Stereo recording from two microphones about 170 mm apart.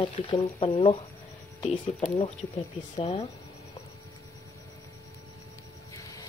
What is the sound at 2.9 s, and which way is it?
Speech, 30° left (ahead or behind).